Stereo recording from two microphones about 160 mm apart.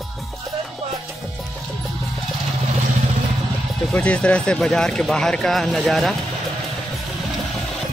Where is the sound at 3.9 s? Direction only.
5° left (ahead or behind).